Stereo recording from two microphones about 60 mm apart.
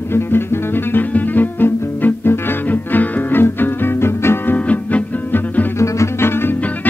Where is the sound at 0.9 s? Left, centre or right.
Left.